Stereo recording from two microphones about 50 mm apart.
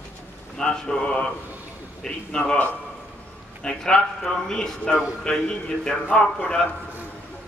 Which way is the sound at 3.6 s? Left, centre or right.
Centre.